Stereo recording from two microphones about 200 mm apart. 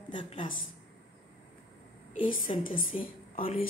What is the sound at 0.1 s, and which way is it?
Speech, 25° left (ahead or behind).